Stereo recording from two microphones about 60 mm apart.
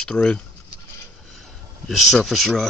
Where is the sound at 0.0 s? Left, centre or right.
Centre.